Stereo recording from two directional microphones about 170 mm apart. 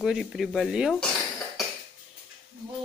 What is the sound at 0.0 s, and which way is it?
Speech, centre (ahead or behind).